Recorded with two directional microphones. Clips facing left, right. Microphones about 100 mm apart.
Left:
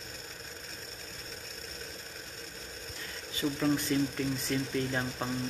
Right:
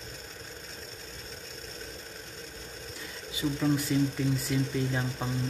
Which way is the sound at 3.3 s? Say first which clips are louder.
Right 1 dB; 10° right (ahead or behind).